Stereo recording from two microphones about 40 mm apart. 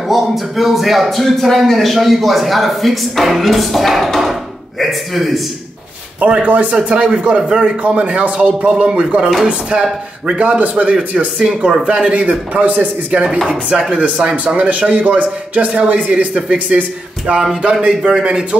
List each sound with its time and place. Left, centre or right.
0.1 s speech: centre
6.1 s a man's voice: right
10.4 s a man's voice: right
11.4 s speech: centre
12.1 s a man's voice: right
17.7 s speech: centre